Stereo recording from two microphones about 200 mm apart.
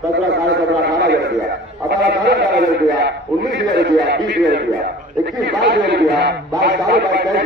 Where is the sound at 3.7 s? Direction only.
60° right (ahead or behind).